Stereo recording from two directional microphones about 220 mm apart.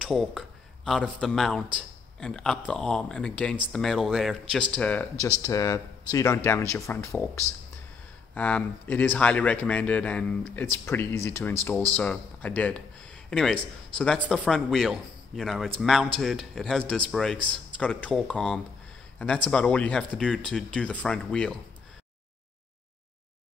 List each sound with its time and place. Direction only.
0.0 s speech: centre (ahead or behind)